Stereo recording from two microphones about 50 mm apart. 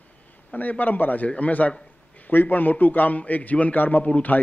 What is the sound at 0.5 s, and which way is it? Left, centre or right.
A man's voice, left.